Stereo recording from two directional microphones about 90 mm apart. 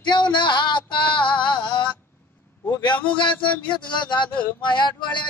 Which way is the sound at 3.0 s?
65° left (ahead or behind).